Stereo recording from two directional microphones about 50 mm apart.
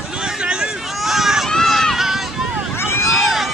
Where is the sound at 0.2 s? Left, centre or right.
Centre.